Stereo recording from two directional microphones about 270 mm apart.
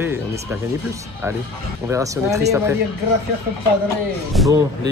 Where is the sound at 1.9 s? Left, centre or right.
Centre.